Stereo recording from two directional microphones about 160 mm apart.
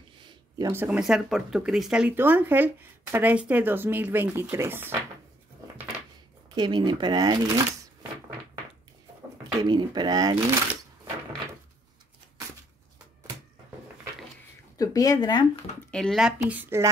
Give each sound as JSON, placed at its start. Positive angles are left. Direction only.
{"t": 0.7, "sound": "speech", "side_deg": -10}
{"t": 6.5, "sound": "speech", "side_deg": -25}
{"t": 9.6, "sound": "speech", "side_deg": -25}
{"t": 14.8, "sound": "speech", "side_deg": 20}
{"t": 15.9, "sound": "speech", "side_deg": 5}